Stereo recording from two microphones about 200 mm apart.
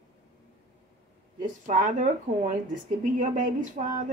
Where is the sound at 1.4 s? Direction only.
40° right (ahead or behind).